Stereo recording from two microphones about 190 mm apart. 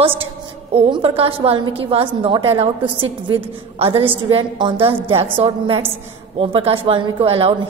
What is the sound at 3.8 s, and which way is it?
A woman's voice, 30° right (ahead or behind).